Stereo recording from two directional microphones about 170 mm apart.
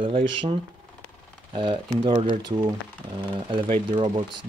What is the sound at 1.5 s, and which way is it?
Speech, 30° right (ahead or behind).